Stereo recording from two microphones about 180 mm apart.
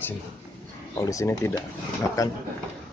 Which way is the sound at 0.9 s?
15° left (ahead or behind).